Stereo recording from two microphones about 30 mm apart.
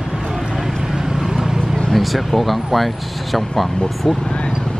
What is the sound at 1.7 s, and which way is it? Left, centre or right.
Vehicle, centre.